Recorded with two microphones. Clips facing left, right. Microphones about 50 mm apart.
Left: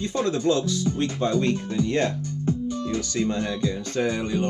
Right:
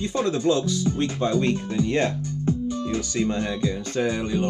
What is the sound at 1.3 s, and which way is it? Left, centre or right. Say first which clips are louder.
Speech: right 1 dB; centre.